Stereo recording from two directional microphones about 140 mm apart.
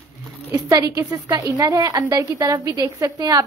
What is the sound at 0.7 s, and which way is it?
A woman's voice, 25° right (ahead or behind).